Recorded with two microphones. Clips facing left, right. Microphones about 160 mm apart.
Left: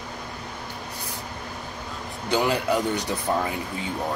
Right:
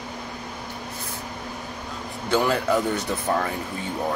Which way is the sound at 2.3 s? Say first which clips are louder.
Right 1 dB; 15° left (ahead or behind).